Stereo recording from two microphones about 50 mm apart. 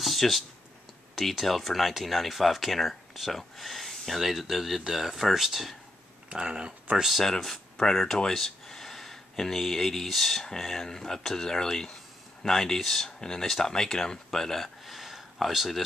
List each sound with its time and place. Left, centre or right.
0.0 s a sound: centre
1.4 s speech: centre
6.2 s speech: centre
7.1 s speech: centre